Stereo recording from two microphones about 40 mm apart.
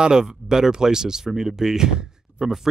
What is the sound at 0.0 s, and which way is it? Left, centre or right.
Speech, centre.